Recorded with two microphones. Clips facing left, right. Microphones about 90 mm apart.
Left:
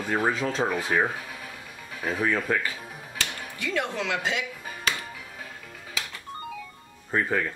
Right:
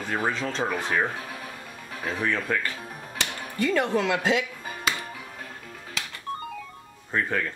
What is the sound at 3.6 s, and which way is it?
Speech, 45° right (ahead or behind).